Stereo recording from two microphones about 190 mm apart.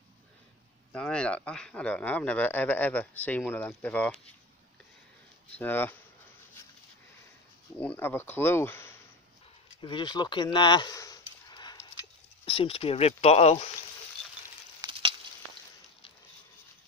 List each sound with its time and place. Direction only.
0.9 s speech: 5° left (ahead or behind)
5.6 s speech: 10° left (ahead or behind)
7.7 s speech: 10° left (ahead or behind)
9.8 s a sound: 25° left (ahead or behind)
12.4 s speech: 30° left (ahead or behind)
14.8 s frying: 25° right (ahead or behind)